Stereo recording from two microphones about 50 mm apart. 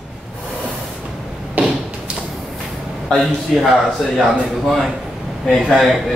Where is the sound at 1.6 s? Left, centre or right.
Right.